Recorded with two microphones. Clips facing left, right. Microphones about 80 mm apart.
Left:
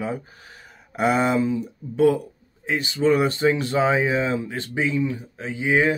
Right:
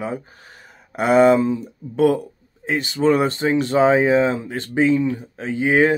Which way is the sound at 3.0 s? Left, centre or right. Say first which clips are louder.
Right 1 dB; right.